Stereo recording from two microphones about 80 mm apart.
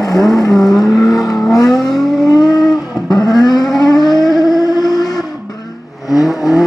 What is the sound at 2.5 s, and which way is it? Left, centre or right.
Vehicle, left.